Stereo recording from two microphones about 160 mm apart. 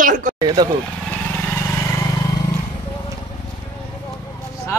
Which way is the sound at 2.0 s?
20° left (ahead or behind).